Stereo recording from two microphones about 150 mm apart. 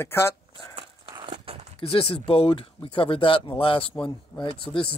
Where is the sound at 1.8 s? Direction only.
40° left (ahead or behind).